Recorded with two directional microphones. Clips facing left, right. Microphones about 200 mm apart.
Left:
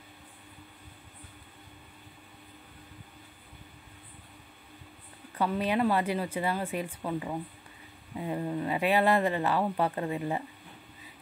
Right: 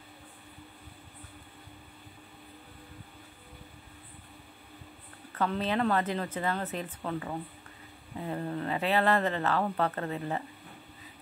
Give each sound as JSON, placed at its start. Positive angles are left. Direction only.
{"t": 5.3, "sound": "speech", "side_deg": 10}